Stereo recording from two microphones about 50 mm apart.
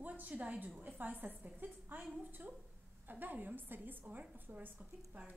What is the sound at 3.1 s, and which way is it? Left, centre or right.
A woman's voice, right.